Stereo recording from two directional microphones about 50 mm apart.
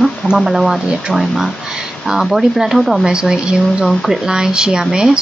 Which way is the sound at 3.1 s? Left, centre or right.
Centre.